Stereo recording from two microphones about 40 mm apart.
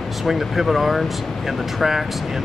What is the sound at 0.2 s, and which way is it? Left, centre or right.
Speech, centre.